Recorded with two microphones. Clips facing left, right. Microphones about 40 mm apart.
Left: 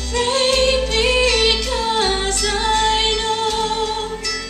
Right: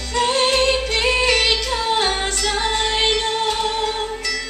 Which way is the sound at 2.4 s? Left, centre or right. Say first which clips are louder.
Left 2 dB; centre.